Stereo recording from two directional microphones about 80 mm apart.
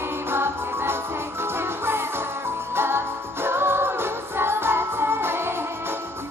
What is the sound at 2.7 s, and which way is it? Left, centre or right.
Jingle bell, right.